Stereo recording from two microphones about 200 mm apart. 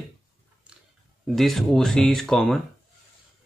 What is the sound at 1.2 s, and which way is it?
Speech, centre (ahead or behind).